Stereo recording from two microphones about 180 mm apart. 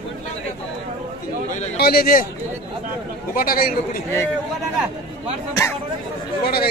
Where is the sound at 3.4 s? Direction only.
55° left (ahead or behind).